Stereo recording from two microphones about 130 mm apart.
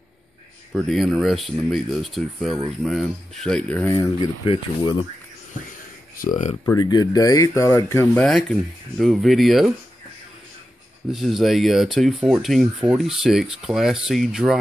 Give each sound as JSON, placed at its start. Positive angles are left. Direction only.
{"t": 0.7, "sound": "speech", "side_deg": 0}
{"t": 3.9, "sound": "speech", "side_deg": 30}
{"t": 6.1, "sound": "speech", "side_deg": 80}
{"t": 6.8, "sound": "speech", "side_deg": 30}
{"t": 8.2, "sound": "speech", "side_deg": 5}
{"t": 11.1, "sound": "speech", "side_deg": 0}